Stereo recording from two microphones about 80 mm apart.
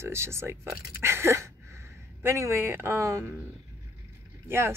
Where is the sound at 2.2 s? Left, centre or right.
Right.